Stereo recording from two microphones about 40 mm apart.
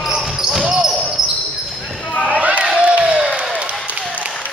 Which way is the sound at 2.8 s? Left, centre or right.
Right.